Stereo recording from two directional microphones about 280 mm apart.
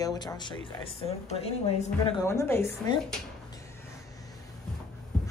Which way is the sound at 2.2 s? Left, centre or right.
Centre.